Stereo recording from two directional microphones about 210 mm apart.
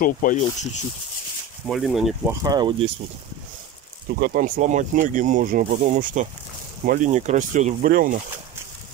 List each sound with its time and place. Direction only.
0.0 s speech: 40° left (ahead or behind)
1.7 s speech: centre (ahead or behind)
2.4 s speech: 20° right (ahead or behind)
4.2 s speech: 45° right (ahead or behind)